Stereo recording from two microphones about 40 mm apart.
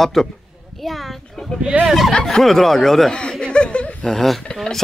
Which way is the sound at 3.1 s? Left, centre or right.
Left.